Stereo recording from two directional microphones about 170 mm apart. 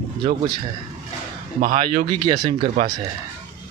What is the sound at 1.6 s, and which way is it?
Speech, 50° right (ahead or behind).